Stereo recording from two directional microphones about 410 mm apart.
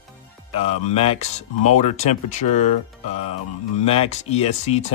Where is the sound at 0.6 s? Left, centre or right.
Centre.